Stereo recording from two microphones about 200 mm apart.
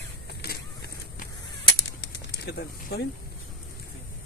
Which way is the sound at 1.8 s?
60° left (ahead or behind).